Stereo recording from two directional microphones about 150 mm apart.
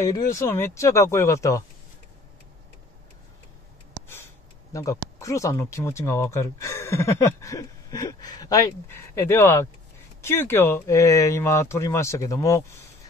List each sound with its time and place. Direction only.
0.0 s speech: 20° left (ahead or behind)
4.7 s speech: 20° left (ahead or behind)